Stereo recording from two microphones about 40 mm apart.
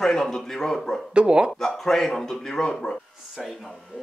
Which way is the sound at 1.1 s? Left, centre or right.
Right.